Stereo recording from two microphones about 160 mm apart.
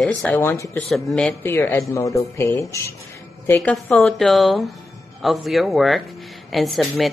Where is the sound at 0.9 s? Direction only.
Centre (ahead or behind).